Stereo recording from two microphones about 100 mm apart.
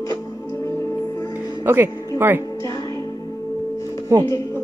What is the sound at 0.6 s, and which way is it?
Music, 30° left (ahead or behind).